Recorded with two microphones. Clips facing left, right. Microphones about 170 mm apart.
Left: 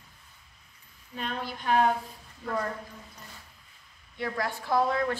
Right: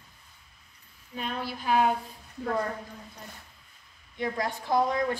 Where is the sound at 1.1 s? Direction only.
5° right (ahead or behind).